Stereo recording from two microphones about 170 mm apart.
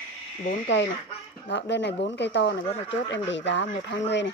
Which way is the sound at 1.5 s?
90° left.